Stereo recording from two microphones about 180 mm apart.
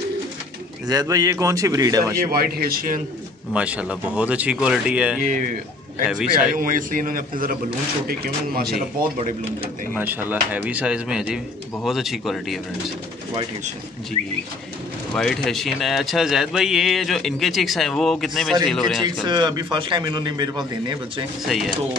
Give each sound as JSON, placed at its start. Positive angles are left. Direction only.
{"t": 0.8, "sound": "a man's voice", "side_deg": -20}
{"t": 2.1, "sound": "speech", "side_deg": -55}
{"t": 3.5, "sound": "a man's voice", "side_deg": -5}
{"t": 6.5, "sound": "a man's voice", "side_deg": -50}
{"t": 9.9, "sound": "a man's voice", "side_deg": -10}
{"t": 15.1, "sound": "a man's voice", "side_deg": 0}
{"t": 19.2, "sound": "a man's voice", "side_deg": -25}
{"t": 21.5, "sound": "a man's voice", "side_deg": 0}